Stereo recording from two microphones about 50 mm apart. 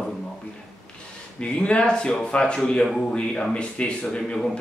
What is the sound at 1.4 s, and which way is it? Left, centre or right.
Speech, left.